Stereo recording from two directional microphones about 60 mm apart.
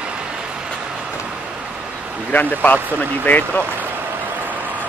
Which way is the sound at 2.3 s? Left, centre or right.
Left.